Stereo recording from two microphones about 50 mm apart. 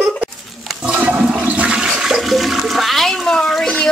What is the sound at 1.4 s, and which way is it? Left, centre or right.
Toilet flush, right.